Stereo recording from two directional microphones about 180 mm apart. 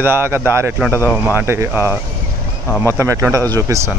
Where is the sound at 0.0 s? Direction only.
10° right (ahead or behind).